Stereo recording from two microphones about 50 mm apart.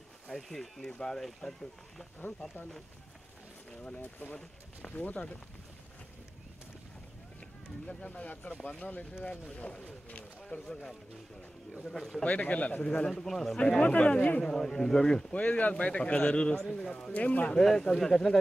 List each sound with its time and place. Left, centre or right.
0.3 s speech: centre
3.7 s a man's voice: left
5.1 s a man's voice: centre
7.3 s a man's voice: centre
12.2 s a man's voice: left
13.1 s speech: centre
13.9 s a man's voice: left
14.4 s speech: centre
15.3 s a man's voice: left
17.6 s speech: centre